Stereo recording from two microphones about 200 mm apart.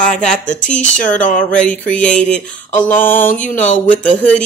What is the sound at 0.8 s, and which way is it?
Speech, 40° left (ahead or behind).